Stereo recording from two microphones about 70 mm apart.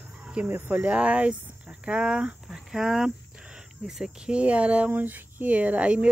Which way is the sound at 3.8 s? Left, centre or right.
Centre.